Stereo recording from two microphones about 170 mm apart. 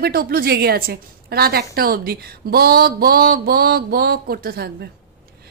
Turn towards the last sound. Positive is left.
turn(degrees=-65)  # may be behind; listen again after turning